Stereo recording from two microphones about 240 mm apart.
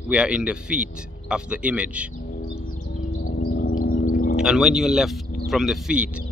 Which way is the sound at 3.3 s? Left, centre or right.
Left.